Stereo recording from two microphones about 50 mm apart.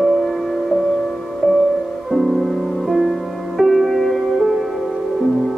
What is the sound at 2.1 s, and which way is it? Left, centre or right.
Music, centre.